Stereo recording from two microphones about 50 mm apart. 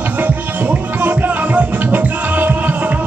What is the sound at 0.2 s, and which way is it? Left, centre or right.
Music, right.